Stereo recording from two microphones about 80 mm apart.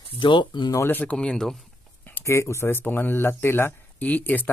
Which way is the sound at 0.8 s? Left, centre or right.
Left.